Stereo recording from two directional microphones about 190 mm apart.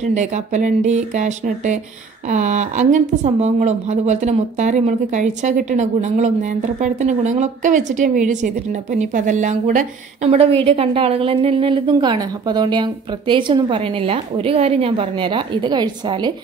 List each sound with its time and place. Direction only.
0.0 s a woman's voice: 40° right (ahead or behind)